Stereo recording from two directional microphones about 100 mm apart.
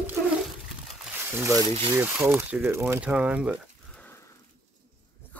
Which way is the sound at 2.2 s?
20° right (ahead or behind).